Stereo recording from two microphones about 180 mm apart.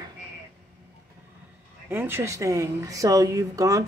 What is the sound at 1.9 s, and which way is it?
A woman's voice, 10° right (ahead or behind).